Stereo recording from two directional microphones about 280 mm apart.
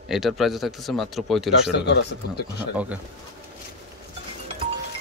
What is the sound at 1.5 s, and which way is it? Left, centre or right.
Speech, left.